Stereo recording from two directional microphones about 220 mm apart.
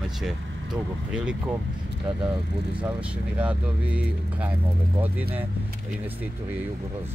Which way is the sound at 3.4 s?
5° right (ahead or behind).